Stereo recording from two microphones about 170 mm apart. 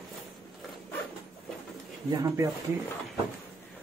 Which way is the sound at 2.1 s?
20° right (ahead or behind).